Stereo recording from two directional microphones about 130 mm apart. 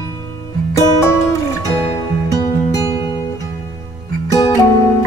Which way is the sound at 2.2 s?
30° left (ahead or behind).